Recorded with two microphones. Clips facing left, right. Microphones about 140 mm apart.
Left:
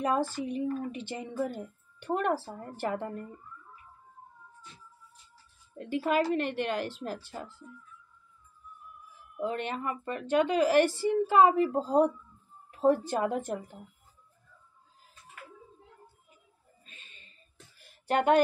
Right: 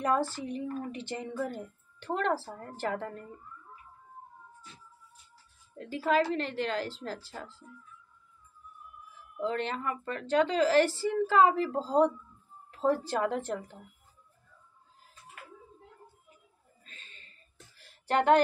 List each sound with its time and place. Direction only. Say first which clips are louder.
0.0 s speech: even; 15° left (ahead or behind)
5.8 s speech: even; 15° left (ahead or behind)
9.4 s speech: even; 15° left (ahead or behind)
16.8 s a sound: right 2 dB; 15° left (ahead or behind)